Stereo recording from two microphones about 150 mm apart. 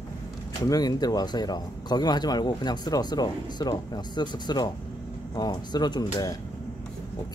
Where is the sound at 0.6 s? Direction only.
25° left (ahead or behind).